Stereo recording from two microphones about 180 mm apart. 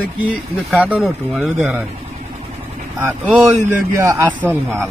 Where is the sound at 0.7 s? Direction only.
5° right (ahead or behind).